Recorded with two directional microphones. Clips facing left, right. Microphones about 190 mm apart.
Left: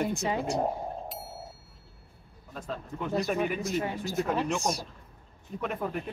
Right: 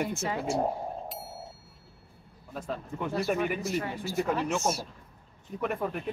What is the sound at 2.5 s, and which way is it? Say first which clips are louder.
Speech: right 2 dB; 5° right (ahead or behind).